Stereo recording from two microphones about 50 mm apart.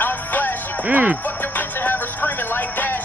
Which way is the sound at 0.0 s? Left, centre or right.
Left.